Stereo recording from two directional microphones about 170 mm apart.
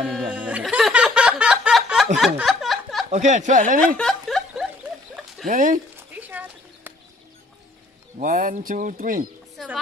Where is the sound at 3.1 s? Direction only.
45° right (ahead or behind).